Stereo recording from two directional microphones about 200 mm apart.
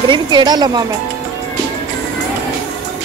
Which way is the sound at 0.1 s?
20° right (ahead or behind).